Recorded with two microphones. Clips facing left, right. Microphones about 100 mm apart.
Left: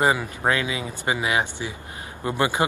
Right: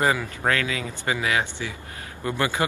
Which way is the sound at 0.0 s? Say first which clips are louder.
Left 2 dB; 20° left (ahead or behind).